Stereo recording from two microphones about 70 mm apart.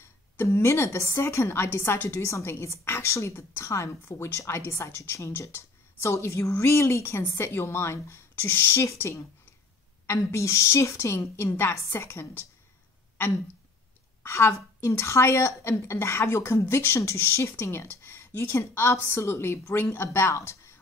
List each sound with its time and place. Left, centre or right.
0.0 s a woman's voice: left
10.0 s a woman's voice: left
14.2 s a woman's voice: left